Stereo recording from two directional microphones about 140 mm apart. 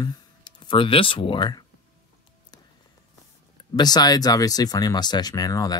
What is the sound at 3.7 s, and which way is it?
Speech, 30° left (ahead or behind).